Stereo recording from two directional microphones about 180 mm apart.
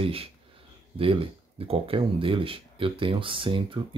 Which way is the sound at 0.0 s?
30° right (ahead or behind).